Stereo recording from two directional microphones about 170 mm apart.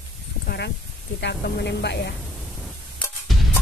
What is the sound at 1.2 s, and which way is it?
Speech, 75° left (ahead or behind).